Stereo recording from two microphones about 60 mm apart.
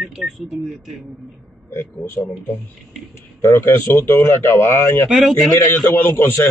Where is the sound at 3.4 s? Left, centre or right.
Left.